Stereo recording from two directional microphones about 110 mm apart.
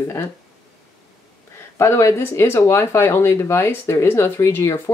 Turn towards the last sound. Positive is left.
turn(degrees=25)  # may be behind; listen again after turning